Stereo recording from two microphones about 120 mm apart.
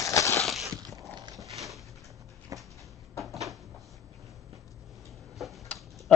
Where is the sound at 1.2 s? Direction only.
30° right (ahead or behind).